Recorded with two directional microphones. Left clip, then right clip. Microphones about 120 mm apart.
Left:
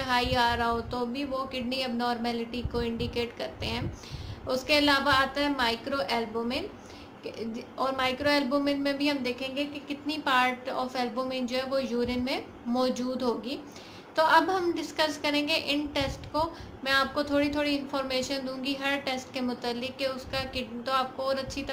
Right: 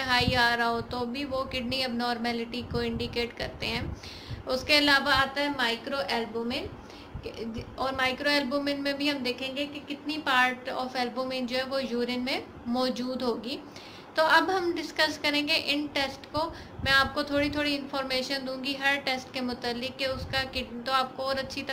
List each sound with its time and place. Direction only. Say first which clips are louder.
0.0 s a woman's voice: right 1 dB; 25° left (ahead or behind)